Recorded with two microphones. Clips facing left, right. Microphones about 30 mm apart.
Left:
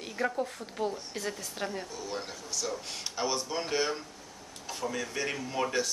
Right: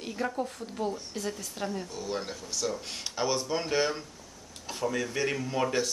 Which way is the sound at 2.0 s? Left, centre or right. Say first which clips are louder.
Right 3 dB; centre.